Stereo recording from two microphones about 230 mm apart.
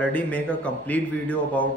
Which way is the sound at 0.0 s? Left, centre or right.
Centre.